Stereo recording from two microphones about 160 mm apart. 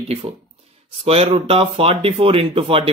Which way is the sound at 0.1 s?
40° right (ahead or behind).